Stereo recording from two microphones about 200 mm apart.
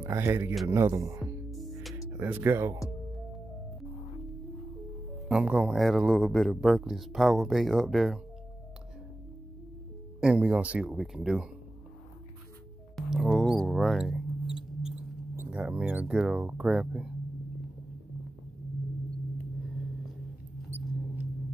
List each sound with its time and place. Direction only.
0.0 s speech: 15° right (ahead or behind)
1.2 s music: centre (ahead or behind)
2.1 s speech: 10° right (ahead or behind)
5.3 s a man's voice: 5° right (ahead or behind)
10.2 s a man's voice: 5° right (ahead or behind)
12.9 s mouse: centre (ahead or behind)